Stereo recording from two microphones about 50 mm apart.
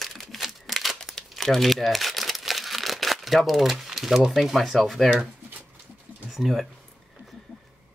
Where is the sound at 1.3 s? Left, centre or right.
Centre.